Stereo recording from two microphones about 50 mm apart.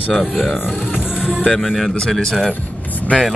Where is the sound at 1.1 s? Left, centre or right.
Centre.